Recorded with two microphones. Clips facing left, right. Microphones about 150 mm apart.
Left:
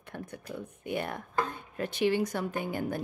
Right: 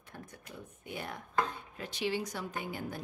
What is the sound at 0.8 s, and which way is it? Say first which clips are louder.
Speech: left 8 dB; 60° left (ahead or behind).